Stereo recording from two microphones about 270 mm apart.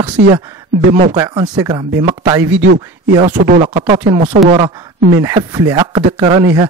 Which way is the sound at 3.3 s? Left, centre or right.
Right.